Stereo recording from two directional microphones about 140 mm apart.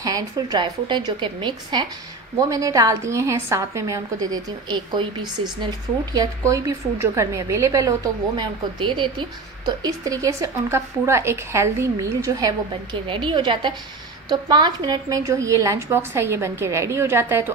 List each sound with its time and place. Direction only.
0.0 s a woman's voice: 25° right (ahead or behind)
8.4 s a woman's voice: 35° right (ahead or behind); by 17.5 s 15° right (ahead or behind)